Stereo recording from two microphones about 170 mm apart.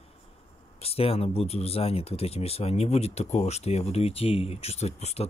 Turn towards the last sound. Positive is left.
turn(degrees=40)  # may be behind; listen again after turning